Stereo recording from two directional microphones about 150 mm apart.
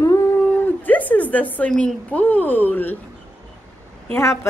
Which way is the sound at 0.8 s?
10° left (ahead or behind).